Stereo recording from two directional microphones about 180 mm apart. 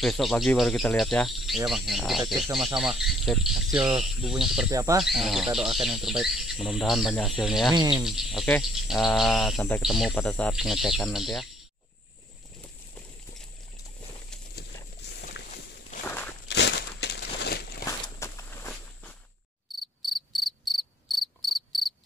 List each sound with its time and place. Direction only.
0.0 s cricket: centre (ahead or behind)
4.6 s speech: 20° right (ahead or behind)
5.0 s cricket: centre (ahead or behind)
7.7 s speech: 25° right (ahead or behind)
8.0 s cricket: centre (ahead or behind)
15.0 s walk: 65° left (ahead or behind)
16.1 s walk: 10° left (ahead or behind)
16.4 s a sound: 70° left (ahead or behind)
17.8 s walk: 15° left (ahead or behind)
19.7 s insect: centre (ahead or behind)